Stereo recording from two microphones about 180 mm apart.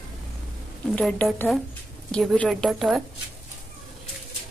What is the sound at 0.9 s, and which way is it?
A woman's voice, 5° left (ahead or behind).